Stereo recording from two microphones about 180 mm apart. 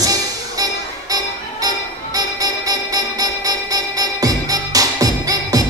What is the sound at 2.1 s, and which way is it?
Music, 20° right (ahead or behind).